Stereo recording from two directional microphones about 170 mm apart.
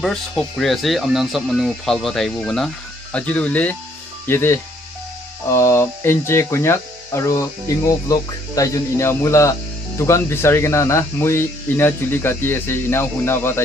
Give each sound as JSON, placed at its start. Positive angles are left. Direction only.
{"t": 0.0, "sound": "speech", "side_deg": 5}